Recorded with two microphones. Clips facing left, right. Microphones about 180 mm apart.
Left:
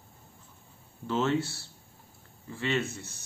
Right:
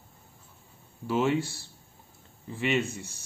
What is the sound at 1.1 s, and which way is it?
Speech, 10° right (ahead or behind).